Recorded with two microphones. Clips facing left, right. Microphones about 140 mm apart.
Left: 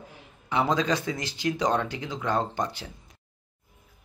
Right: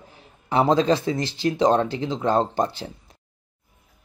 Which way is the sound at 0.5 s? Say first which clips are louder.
Right 6 dB; 35° right (ahead or behind).